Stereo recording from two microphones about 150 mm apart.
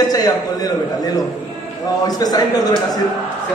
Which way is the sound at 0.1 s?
25° left (ahead or behind).